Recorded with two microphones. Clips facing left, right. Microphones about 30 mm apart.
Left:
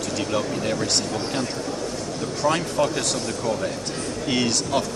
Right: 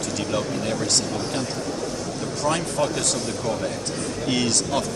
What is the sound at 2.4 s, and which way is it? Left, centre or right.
Speech, centre.